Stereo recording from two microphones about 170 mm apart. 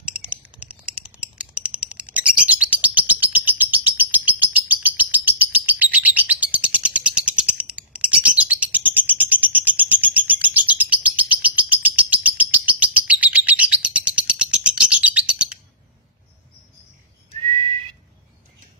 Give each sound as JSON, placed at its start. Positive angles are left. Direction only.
{"t": 0.0, "sound": "typing", "side_deg": -5}
{"t": 11.1, "sound": "bird", "side_deg": -10}